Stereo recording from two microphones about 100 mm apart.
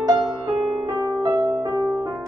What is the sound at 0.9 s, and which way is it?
Music, 35° right (ahead or behind).